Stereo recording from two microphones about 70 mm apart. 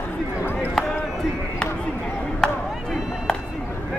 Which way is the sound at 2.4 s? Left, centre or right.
Centre.